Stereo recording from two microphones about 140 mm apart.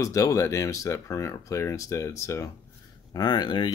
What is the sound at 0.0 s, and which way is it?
Speech, 20° left (ahead or behind).